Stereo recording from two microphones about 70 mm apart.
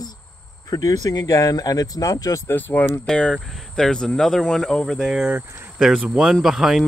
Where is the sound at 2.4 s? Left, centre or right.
Left.